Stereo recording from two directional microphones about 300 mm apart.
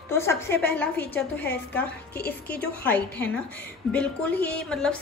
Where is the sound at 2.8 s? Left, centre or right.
Centre.